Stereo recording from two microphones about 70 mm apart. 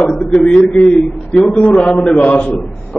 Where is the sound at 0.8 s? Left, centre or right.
Centre.